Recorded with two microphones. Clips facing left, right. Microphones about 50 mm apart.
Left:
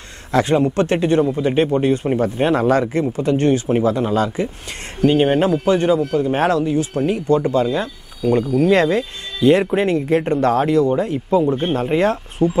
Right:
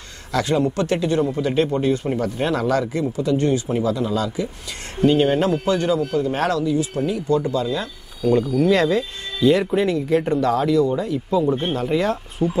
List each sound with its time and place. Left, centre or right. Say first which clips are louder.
0.3 s speech: left 4 dB; left
5.0 s speech: left 2 dB; left